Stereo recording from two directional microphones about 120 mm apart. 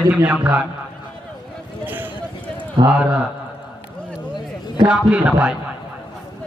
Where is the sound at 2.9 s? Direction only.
10° right (ahead or behind).